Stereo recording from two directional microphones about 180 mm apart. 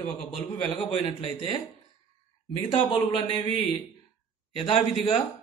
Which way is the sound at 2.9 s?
30° left (ahead or behind).